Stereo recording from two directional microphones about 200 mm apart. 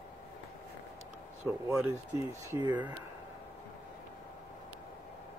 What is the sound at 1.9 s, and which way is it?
Speech, 15° right (ahead or behind).